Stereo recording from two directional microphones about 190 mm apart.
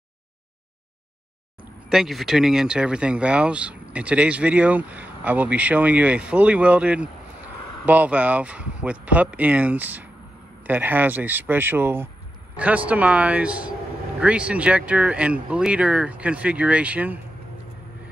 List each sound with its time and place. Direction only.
1.9 s speech: centre (ahead or behind)